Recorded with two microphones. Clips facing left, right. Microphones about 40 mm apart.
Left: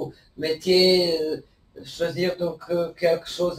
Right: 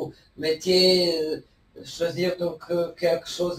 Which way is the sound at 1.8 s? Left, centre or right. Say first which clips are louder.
Left 1 dB; centre.